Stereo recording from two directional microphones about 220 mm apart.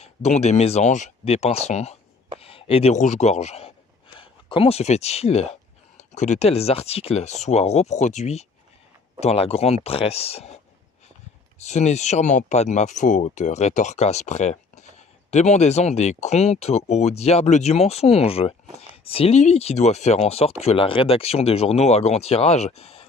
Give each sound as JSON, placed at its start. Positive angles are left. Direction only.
{"t": 0.0, "sound": "speech", "side_deg": 30}
{"t": 11.6, "sound": "speech", "side_deg": 30}